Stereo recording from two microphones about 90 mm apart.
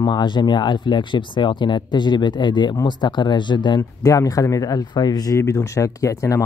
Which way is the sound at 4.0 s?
40° left (ahead or behind).